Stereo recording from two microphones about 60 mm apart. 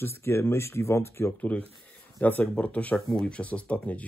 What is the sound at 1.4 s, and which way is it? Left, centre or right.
Speech, left.